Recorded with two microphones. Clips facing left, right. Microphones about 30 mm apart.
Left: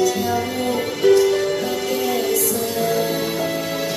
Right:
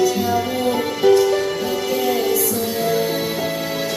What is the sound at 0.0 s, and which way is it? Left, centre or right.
Music, centre.